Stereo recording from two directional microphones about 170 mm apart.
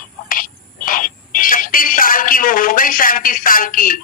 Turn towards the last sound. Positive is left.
turn(degrees=55)  # may be behind; listen again after turning